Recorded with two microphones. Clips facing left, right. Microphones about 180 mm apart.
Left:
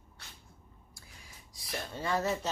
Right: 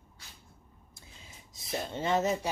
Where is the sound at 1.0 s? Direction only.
20° right (ahead or behind).